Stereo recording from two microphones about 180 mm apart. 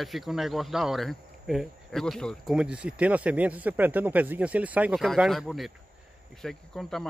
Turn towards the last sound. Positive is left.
turn(degrees=0)  # may be behind; listen again after turning